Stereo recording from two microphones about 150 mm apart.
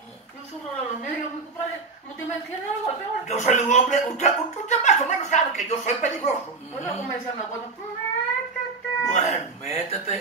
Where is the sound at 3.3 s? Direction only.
50° left (ahead or behind).